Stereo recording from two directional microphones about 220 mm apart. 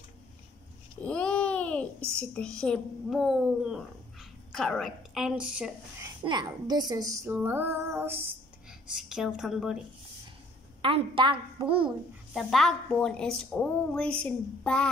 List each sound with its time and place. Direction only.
1.0 s babbling: 5° left (ahead or behind)
2.1 s a woman's voice: 5° left (ahead or behind)
6.2 s female singing: 20° right (ahead or behind)
8.9 s a woman's voice: centre (ahead or behind)
10.8 s a woman's voice: 25° right (ahead or behind)
12.4 s a woman's voice: centre (ahead or behind)